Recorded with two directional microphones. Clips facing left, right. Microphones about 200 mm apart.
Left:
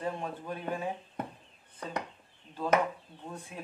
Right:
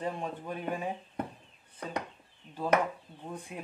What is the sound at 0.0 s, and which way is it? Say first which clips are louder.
Speech: even; 15° right (ahead or behind).